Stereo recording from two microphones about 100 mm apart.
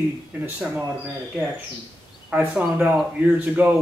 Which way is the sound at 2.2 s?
15° right (ahead or behind).